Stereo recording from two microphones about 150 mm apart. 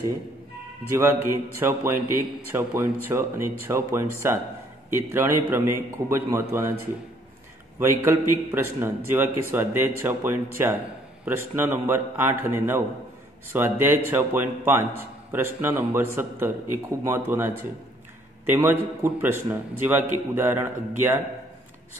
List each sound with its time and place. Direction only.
0.8 s a man's voice: 15° right (ahead or behind)
7.8 s a man's voice: 15° right (ahead or behind)